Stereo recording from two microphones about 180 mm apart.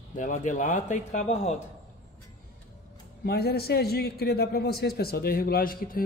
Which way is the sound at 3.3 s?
60° left (ahead or behind).